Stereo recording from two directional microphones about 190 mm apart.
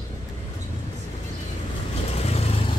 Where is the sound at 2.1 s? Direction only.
35° left (ahead or behind).